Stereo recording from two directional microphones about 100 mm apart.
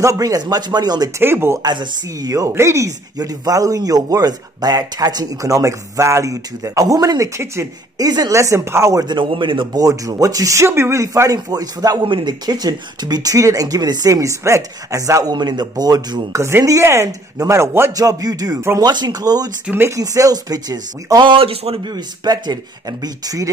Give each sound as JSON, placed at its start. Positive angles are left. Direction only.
{"t": 0.0, "sound": "speech", "side_deg": -35}
{"t": 1.2, "sound": "speech", "side_deg": -25}
{"t": 1.6, "sound": "speech", "side_deg": -45}
{"t": 9.0, "sound": "a man's voice", "side_deg": -55}
{"t": 9.8, "sound": "speech", "side_deg": -35}
{"t": 12.0, "sound": "speech", "side_deg": -50}
{"t": 15.3, "sound": "speech", "side_deg": -45}
{"t": 16.3, "sound": "speech", "side_deg": -30}
{"t": 17.9, "sound": "speech", "side_deg": -40}
{"t": 21.3, "sound": "speech", "side_deg": -75}
{"t": 21.9, "sound": "speech", "side_deg": -40}